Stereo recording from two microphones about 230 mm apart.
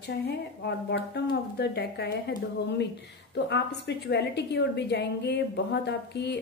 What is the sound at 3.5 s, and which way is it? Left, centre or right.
A woman's voice, left.